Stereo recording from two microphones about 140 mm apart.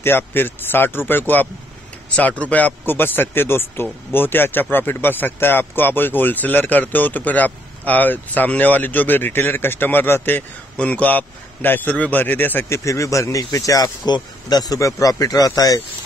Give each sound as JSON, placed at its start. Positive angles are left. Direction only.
{"t": 0.0, "sound": "a man's voice", "side_deg": 15}